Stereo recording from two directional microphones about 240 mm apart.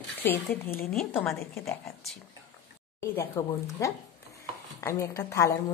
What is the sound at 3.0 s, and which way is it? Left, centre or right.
A woman's voice, centre.